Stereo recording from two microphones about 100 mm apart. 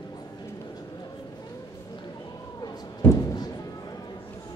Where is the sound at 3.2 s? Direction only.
40° left (ahead or behind).